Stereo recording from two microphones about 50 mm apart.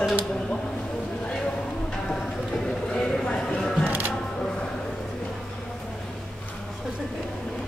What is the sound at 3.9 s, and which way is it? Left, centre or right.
Music, right.